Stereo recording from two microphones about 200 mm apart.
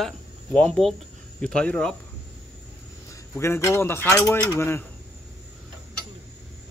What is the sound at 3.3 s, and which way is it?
Speech, 15° left (ahead or behind).